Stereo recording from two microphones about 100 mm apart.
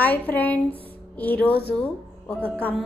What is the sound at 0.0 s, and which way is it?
A woman's voice, 15° left (ahead or behind).